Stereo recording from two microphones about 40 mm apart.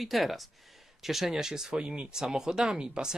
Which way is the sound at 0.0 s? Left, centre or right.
Centre.